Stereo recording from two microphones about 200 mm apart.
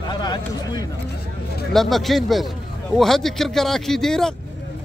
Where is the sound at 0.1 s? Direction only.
20° left (ahead or behind).